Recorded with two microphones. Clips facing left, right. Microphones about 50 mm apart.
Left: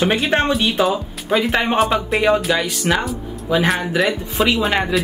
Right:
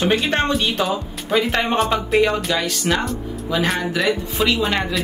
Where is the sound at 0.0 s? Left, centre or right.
Centre.